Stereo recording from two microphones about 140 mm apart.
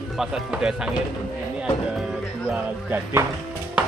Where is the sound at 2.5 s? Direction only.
15° right (ahead or behind).